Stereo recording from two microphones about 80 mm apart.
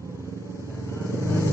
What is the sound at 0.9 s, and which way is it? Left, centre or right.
Vehicle, left.